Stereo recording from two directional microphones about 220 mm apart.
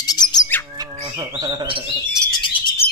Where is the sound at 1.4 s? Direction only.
20° right (ahead or behind).